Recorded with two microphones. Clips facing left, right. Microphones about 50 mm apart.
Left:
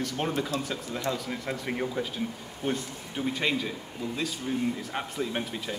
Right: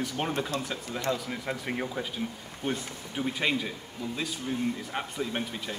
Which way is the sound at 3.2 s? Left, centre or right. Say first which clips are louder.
Even; centre.